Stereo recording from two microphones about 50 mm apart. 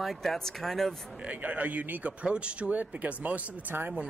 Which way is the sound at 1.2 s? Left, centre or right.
Right.